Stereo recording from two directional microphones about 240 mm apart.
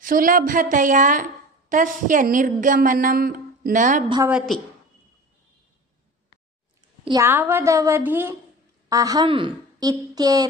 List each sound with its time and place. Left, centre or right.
0.0 s a woman's voice: right
4.3 s a woman's voice: centre
7.1 s a woman's voice: centre